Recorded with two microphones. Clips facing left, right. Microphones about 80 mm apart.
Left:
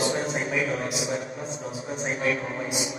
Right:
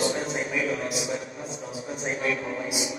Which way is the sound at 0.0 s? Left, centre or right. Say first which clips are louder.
Left 1 dB; left.